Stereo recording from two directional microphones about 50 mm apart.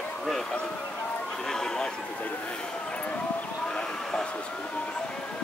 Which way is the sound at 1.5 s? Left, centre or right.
Centre.